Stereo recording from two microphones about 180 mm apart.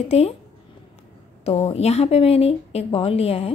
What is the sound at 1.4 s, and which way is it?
Speech, 35° left (ahead or behind).